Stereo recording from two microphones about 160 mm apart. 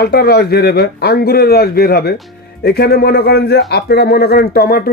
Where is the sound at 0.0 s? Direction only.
80° left.